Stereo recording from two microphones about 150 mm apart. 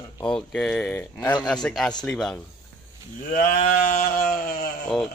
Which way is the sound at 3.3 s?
60° left (ahead or behind).